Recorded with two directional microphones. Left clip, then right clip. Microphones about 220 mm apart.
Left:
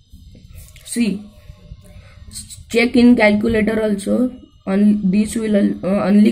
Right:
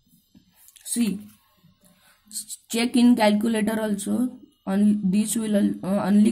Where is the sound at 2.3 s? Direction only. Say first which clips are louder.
Left 11 dB; 25° right (ahead or behind).